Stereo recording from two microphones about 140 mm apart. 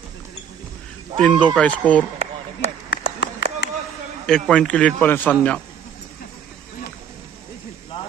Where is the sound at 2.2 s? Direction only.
55° right (ahead or behind).